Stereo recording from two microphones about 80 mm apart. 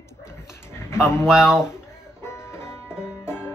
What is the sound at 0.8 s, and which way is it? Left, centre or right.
Speech, left.